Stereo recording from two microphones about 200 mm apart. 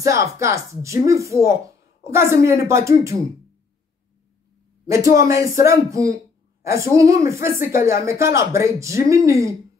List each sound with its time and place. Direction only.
0.0 s speech: 15° right (ahead or behind)
4.8 s speech: 15° right (ahead or behind)